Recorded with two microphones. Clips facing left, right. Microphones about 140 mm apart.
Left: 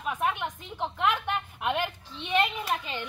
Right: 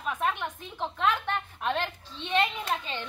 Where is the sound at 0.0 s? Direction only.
15° left (ahead or behind).